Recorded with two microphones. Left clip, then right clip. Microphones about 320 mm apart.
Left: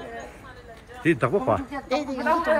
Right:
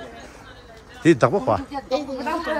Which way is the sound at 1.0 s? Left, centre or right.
Centre.